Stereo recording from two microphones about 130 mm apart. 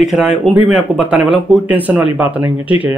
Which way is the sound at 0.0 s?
5° right (ahead or behind).